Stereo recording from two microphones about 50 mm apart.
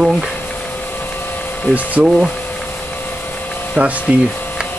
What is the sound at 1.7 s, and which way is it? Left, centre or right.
Speech, right.